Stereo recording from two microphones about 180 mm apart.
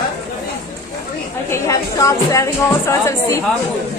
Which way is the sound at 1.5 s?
15° left (ahead or behind).